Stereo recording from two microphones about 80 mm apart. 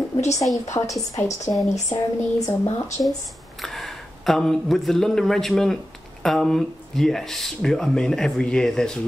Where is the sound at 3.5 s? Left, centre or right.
Centre.